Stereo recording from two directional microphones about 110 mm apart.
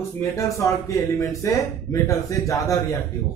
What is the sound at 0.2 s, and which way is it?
Speech, 30° left (ahead or behind).